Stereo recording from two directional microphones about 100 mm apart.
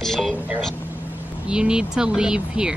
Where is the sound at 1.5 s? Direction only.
10° right (ahead or behind).